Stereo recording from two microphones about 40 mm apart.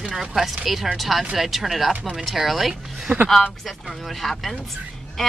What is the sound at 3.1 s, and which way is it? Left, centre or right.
Speech, right.